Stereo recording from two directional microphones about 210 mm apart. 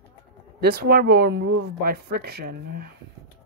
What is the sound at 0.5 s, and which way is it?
Speech, 50° right (ahead or behind).